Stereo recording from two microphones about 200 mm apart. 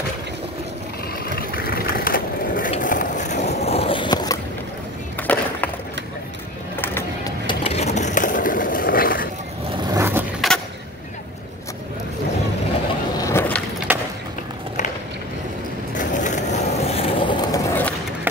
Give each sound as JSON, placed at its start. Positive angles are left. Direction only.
{"t": 1.3, "sound": "a sound", "side_deg": 50}
{"t": 2.7, "sound": "skateboard", "side_deg": 40}
{"t": 5.2, "sound": "skateboard", "side_deg": 10}
{"t": 6.8, "sound": "a sound", "side_deg": 10}
{"t": 7.4, "sound": "vehicle", "side_deg": 30}
{"t": 9.9, "sound": "vehicle", "side_deg": -10}
{"t": 10.4, "sound": "vehicle", "side_deg": 0}
{"t": 13.2, "sound": "keys jangling", "side_deg": 10}
{"t": 13.9, "sound": "a sound", "side_deg": -10}
{"t": 16.0, "sound": "skateboard", "side_deg": 40}